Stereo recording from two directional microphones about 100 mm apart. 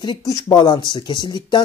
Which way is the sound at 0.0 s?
40° left (ahead or behind).